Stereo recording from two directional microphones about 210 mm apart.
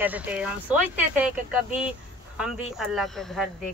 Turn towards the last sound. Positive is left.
turn(degrees=0)  # may be behind; listen again after turning